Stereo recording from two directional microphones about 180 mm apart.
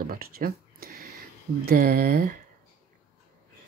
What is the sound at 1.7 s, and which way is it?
Speech, 55° right (ahead or behind).